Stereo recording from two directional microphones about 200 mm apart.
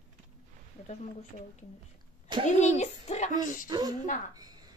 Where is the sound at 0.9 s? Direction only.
35° left (ahead or behind).